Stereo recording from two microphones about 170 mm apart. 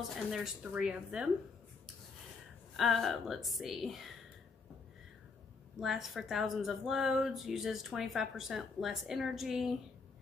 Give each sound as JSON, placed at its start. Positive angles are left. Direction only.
{"t": 0.1, "sound": "speech", "side_deg": 0}
{"t": 2.7, "sound": "speech", "side_deg": 0}
{"t": 5.8, "sound": "speech", "side_deg": 0}